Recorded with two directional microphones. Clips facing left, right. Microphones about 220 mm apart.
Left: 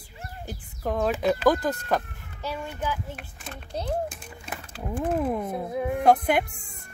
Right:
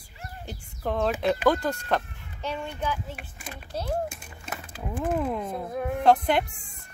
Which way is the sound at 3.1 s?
5° right (ahead or behind).